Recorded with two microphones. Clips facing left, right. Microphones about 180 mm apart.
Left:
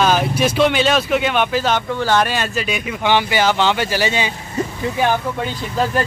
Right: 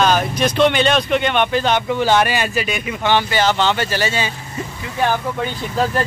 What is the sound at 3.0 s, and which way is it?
Speech, 15° left (ahead or behind).